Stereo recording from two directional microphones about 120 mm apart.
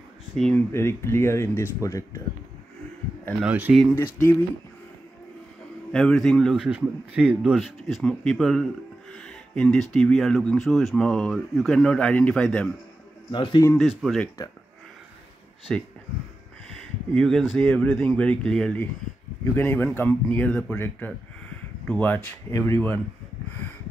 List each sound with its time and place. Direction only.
0.6 s speech: 20° left (ahead or behind)
3.4 s speech: 15° right (ahead or behind)
3.9 s speech: 20° left (ahead or behind)
5.9 s speech: 5° left (ahead or behind)
6.5 s speech: 10° right (ahead or behind); by 12.7 s 10° left (ahead or behind)
13.3 s a man's voice: 40° left (ahead or behind)
13.7 s speech: centre (ahead or behind)
15.7 s speech: 5° left (ahead or behind)
17.1 s speech: 5° left (ahead or behind)